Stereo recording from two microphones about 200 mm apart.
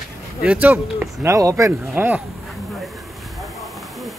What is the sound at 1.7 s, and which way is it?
Speech, 5° right (ahead or behind).